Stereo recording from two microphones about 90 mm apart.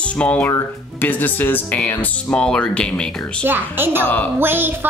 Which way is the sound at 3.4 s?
25° right (ahead or behind).